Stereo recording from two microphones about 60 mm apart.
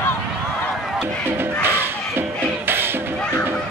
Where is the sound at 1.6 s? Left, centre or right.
Right.